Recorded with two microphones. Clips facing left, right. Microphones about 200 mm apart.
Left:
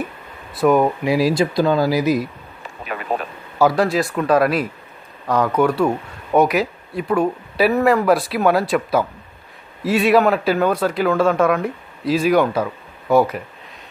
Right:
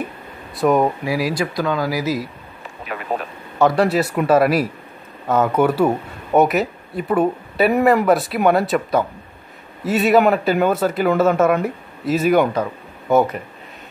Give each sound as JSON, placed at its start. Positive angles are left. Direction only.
{"t": 0.6, "sound": "speech", "side_deg": 0}
{"t": 1.0, "sound": "speech", "side_deg": 25}
{"t": 2.0, "sound": "speech", "side_deg": 20}
{"t": 3.5, "sound": "speech", "side_deg": 0}